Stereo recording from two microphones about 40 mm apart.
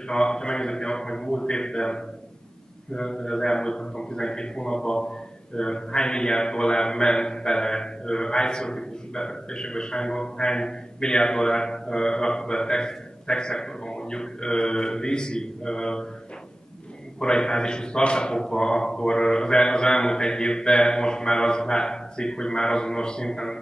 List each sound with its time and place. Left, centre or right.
0.1 s speech: centre
17.2 s speech: centre